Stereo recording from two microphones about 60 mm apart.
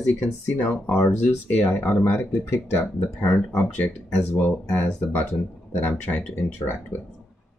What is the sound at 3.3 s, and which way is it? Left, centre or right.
Speech, left.